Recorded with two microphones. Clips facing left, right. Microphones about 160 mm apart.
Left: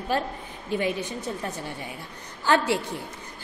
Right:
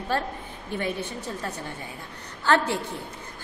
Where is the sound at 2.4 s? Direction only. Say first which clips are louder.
Left 1 dB; 15° left (ahead or behind).